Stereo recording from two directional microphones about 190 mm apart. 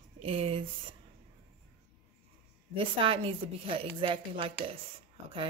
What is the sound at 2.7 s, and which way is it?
A woman's voice, 25° right (ahead or behind).